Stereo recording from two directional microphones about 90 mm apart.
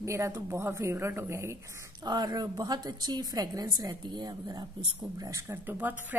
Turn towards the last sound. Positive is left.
turn(degrees=-20)  # may be behind; listen again after turning